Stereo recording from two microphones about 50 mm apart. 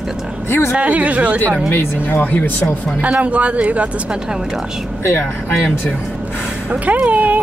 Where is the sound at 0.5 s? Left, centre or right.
Left.